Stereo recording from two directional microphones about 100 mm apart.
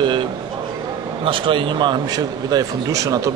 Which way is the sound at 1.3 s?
60° right (ahead or behind).